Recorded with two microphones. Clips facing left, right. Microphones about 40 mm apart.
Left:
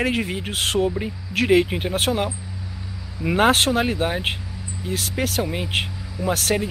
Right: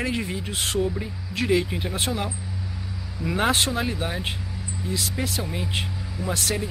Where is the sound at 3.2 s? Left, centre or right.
Left.